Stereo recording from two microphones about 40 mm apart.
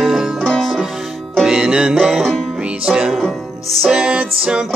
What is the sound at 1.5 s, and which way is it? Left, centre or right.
Music, centre.